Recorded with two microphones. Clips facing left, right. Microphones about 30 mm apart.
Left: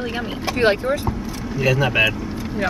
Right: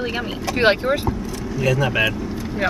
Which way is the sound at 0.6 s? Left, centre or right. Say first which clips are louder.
Right 1 dB; right.